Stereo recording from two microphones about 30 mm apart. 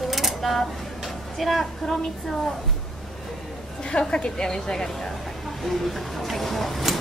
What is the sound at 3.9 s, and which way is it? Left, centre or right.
Speech, left.